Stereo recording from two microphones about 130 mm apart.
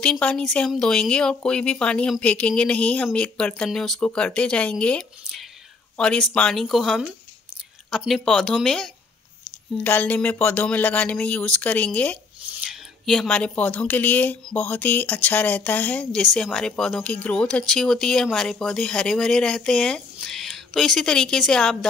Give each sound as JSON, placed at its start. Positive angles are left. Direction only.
{"t": 0.0, "sound": "speech", "side_deg": 5}
{"t": 12.5, "sound": "speech", "side_deg": 0}